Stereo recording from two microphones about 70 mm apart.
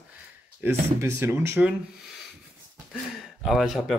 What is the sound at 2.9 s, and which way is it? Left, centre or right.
Speech, centre.